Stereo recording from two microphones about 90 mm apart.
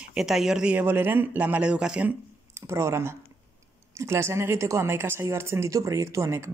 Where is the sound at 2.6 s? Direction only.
30° right (ahead or behind).